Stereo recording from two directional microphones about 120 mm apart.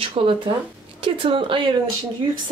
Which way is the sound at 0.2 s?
55° right (ahead or behind).